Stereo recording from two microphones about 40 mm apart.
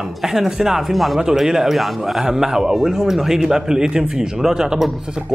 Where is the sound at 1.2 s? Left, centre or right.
Centre.